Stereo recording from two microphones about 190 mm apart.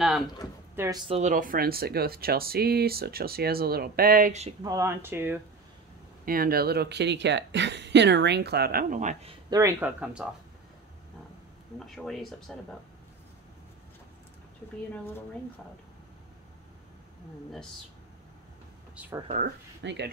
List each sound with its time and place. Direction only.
0.7 s speech: 20° right (ahead or behind)
1.3 s speech: 45° right (ahead or behind)
4.6 s speech: 15° right (ahead or behind)
6.2 s speech: 50° right (ahead or behind)
9.5 s speech: 15° right (ahead or behind)
11.8 s speech: centre (ahead or behind)
18.9 s speech: 10° right (ahead or behind)
19.2 s speech: 45° right (ahead or behind)
19.8 s speech: 70° right (ahead or behind)